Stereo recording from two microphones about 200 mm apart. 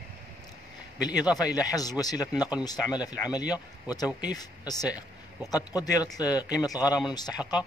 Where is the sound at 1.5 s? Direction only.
20° left (ahead or behind).